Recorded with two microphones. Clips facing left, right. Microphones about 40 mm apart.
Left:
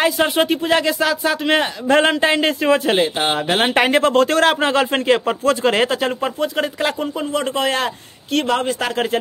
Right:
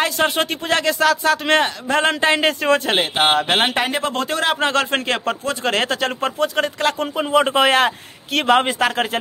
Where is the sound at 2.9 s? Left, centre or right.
Right.